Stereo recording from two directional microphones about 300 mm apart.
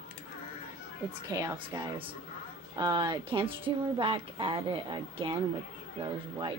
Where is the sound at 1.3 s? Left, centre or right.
Centre.